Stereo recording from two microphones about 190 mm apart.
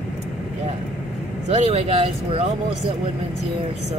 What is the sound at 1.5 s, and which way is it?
Speech, 35° right (ahead or behind).